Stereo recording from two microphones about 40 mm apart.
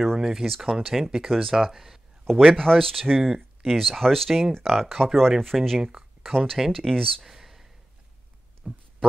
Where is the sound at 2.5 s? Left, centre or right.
Centre.